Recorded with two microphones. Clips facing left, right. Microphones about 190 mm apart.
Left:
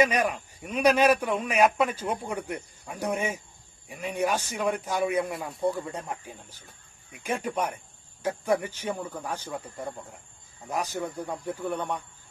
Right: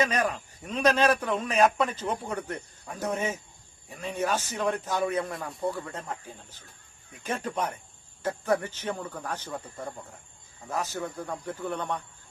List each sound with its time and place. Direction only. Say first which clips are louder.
0.0 s a man's voice: left 3 dB; 10° left (ahead or behind)